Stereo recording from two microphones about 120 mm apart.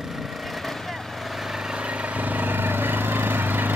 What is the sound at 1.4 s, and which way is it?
Vehicle, 5° right (ahead or behind).